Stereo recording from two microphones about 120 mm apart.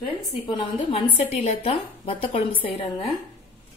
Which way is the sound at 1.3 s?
60° left (ahead or behind).